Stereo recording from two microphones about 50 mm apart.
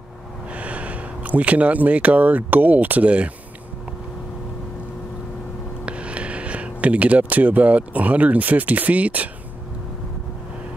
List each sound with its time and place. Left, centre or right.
0.5 s speech: right
5.9 s speech: right